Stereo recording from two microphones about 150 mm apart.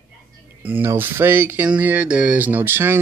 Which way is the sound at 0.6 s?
15° right (ahead or behind).